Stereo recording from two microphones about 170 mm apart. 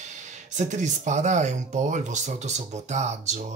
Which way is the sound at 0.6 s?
45° right (ahead or behind).